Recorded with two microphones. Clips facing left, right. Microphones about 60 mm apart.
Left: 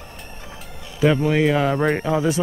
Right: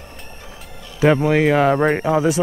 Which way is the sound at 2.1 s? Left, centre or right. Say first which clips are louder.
Right 3 dB; centre.